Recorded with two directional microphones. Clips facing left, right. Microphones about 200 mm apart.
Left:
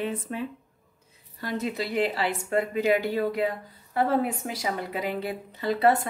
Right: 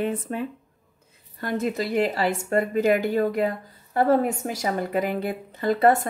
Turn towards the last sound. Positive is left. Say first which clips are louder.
# right 3 dB
turn(degrees=-50)  # may be behind; listen again after turning